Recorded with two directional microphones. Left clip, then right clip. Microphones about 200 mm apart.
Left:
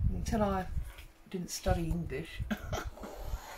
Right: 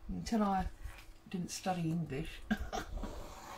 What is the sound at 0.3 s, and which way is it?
A woman's voice, 15° left (ahead or behind).